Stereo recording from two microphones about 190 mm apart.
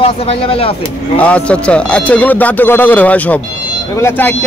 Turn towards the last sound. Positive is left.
turn(degrees=10)  # may be behind; listen again after turning